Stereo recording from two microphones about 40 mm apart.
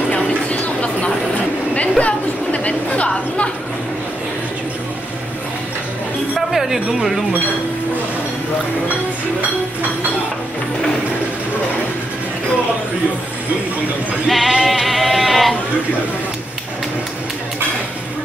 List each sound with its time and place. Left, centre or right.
0.1 s vehicle: left
1.8 s chatter: left
6.3 s a sound: centre
14.2 s sheep: centre